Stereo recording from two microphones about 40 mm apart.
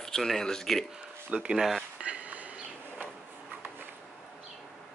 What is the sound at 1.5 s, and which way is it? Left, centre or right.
Speech, centre.